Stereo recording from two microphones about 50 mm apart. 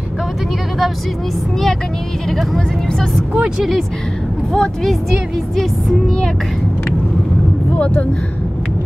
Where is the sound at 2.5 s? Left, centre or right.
Centre.